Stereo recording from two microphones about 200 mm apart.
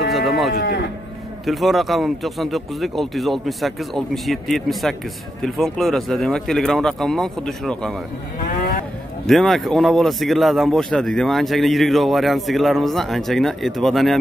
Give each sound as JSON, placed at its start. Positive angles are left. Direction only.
{"t": 0.1, "sound": "livestock", "side_deg": 0}
{"t": 0.6, "sound": "moo", "side_deg": 55}
{"t": 1.4, "sound": "speech", "side_deg": 0}
{"t": 9.2, "sound": "speech", "side_deg": 0}